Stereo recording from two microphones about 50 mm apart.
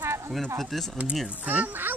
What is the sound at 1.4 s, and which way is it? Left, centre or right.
Speech, right.